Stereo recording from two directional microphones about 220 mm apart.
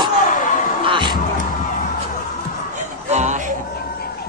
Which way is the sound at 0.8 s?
20° right (ahead or behind).